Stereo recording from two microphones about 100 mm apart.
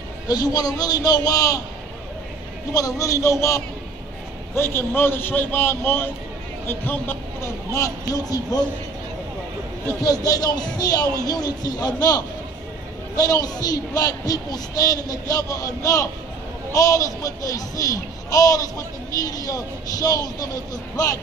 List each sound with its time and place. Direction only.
0.3 s a child's voice: 40° left (ahead or behind)
2.7 s a child's voice: 35° left (ahead or behind)
7.7 s a child's voice: 35° left (ahead or behind)
10.0 s a child's voice: 40° left (ahead or behind)